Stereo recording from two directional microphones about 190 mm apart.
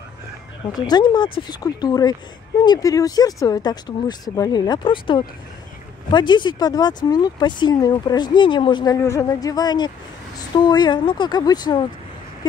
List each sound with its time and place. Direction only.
0.7 s speech: 20° left (ahead or behind)